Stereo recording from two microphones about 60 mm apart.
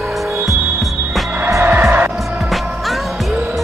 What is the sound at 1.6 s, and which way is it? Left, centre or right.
Music, right.